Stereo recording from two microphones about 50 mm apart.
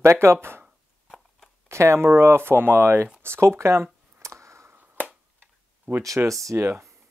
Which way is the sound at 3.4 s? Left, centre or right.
Right.